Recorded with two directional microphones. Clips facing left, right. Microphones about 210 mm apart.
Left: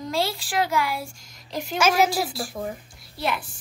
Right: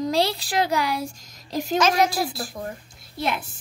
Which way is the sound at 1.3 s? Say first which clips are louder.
Right 3 dB; 40° right (ahead or behind).